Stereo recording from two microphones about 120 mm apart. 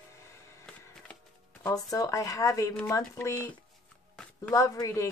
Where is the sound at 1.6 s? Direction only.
30° left (ahead or behind).